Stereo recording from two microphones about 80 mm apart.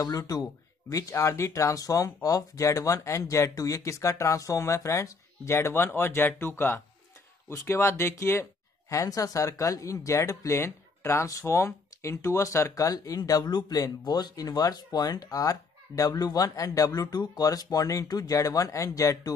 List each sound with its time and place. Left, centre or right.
0.0 s speech: left